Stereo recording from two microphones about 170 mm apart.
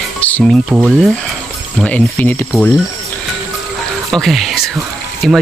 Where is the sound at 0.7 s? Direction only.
5° right (ahead or behind).